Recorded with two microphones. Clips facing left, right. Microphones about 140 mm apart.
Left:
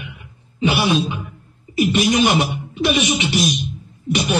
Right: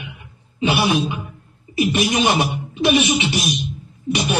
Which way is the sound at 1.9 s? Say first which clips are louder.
Left 2 dB; 15° right (ahead or behind).